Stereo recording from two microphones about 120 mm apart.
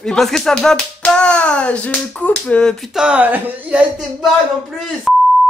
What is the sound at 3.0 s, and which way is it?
Speech, 10° right (ahead or behind).